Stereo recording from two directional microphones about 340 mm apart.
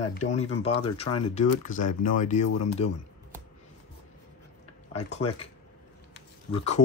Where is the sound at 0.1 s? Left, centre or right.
Centre.